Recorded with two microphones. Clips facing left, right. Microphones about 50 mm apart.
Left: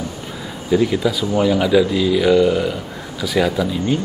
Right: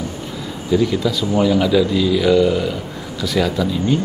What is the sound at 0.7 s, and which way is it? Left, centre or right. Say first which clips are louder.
A man's voice: left 1 dB; centre.